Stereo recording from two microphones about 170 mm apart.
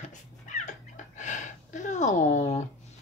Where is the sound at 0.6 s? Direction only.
45° left (ahead or behind).